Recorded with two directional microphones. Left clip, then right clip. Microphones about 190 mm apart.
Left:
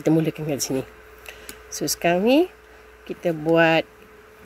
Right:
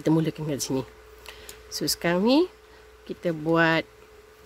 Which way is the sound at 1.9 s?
25° right (ahead or behind).